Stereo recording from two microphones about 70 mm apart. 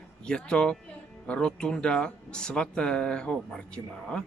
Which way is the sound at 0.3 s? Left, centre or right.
Centre.